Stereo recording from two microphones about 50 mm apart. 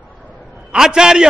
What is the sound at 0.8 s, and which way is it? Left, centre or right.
Speech, centre.